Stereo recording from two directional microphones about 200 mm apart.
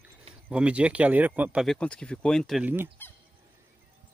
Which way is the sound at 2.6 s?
10° right (ahead or behind).